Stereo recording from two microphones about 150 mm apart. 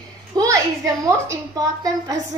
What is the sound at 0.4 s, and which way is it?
A woman's voice, 20° right (ahead or behind).